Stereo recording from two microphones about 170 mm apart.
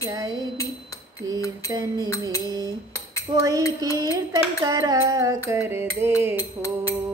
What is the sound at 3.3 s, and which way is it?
Music, 25° right (ahead or behind).